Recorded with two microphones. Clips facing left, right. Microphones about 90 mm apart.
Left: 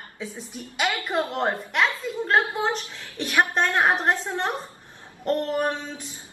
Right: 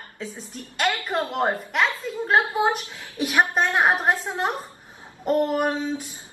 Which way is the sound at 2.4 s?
20° right (ahead or behind).